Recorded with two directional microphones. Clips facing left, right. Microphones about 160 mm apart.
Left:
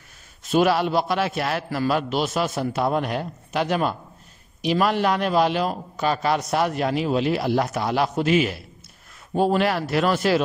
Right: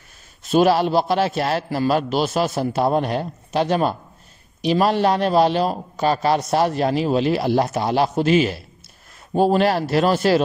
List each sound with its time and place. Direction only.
0.5 s a man's voice: 30° right (ahead or behind)